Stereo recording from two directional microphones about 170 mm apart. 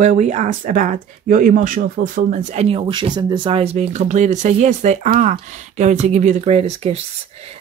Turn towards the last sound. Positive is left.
turn(degrees=-40)  # may be behind; listen again after turning